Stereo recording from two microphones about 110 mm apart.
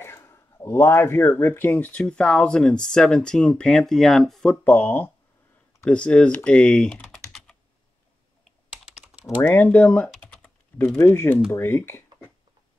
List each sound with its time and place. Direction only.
0.0 s speech: 25° left (ahead or behind); by 4.6 s 5° left (ahead or behind)
4.6 s speech: 15° left (ahead or behind)
8.5 s typing: centre (ahead or behind)
9.5 s speech: 20° left (ahead or behind)
9.8 s typing: 10° left (ahead or behind)
11.0 s speech: 25° left (ahead or behind)